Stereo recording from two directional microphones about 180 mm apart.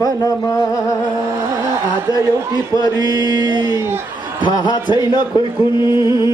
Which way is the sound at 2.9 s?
20° right (ahead or behind).